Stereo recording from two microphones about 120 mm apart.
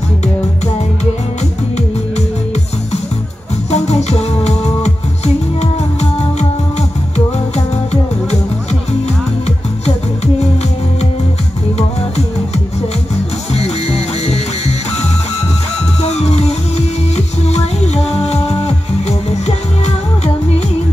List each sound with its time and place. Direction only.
3.7 s music: 65° left (ahead or behind)
7.5 s music: 65° left (ahead or behind)
13.5 s music: 60° left (ahead or behind)
16.0 s music: 60° left (ahead or behind)